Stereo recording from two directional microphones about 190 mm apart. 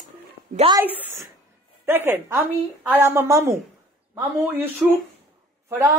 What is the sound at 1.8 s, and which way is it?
A woman's voice, 10° right (ahead or behind).